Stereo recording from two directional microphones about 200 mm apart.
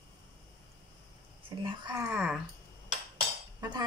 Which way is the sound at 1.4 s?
25° right (ahead or behind).